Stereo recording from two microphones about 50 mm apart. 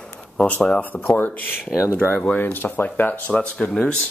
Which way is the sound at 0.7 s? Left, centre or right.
Left.